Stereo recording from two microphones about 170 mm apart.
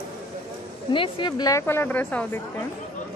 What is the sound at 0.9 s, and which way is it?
Speech, 30° left (ahead or behind).